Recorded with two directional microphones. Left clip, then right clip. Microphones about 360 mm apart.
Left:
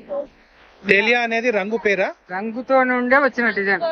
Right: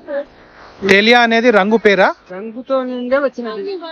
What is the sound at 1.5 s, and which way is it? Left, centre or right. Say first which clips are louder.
Speech: right 8 dB; right.